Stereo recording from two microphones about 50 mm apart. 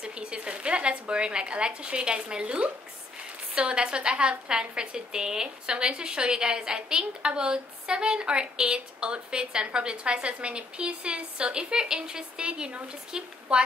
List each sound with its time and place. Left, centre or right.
0.0 s a woman's voice: centre